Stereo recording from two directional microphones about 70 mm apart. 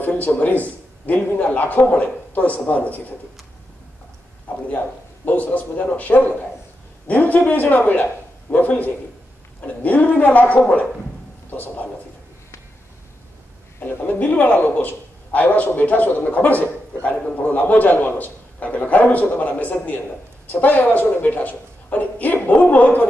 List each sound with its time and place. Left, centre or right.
0.0 s a man's voice: left
4.6 s a man's voice: left
13.7 s a man's voice: left